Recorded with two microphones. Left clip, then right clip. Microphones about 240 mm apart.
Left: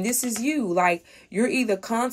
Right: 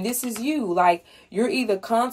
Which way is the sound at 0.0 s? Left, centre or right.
Left.